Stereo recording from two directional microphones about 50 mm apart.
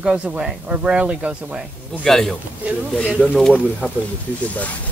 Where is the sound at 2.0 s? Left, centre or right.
Centre.